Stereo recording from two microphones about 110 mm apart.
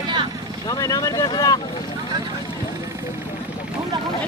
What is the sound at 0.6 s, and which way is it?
Speech, 35° left (ahead or behind).